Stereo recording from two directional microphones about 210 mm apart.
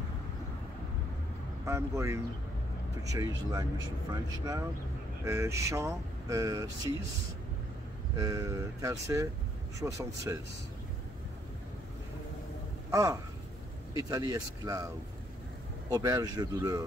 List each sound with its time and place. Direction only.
1.7 s speech: 15° right (ahead or behind)
8.2 s speech: 15° right (ahead or behind)
12.9 s speech: 15° right (ahead or behind)
15.9 s speech: 15° right (ahead or behind)